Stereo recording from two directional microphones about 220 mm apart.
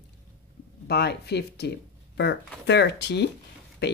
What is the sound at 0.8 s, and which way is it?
Speech, 50° left (ahead or behind).